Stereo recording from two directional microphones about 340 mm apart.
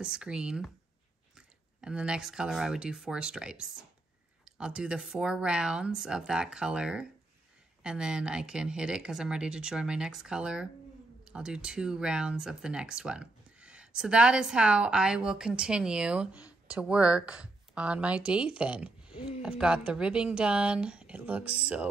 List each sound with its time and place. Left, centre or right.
0.0 s speech: centre
19.1 s a sound: centre
19.9 s speech: centre